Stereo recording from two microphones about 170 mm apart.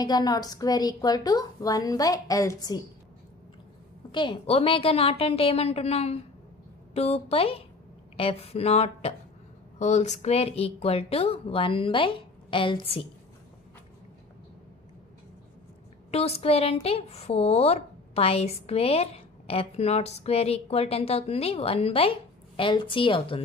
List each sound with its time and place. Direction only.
0.0 s a woman's voice: 25° left (ahead or behind)
4.1 s a woman's voice: 30° left (ahead or behind)
16.1 s a woman's voice: 35° left (ahead or behind)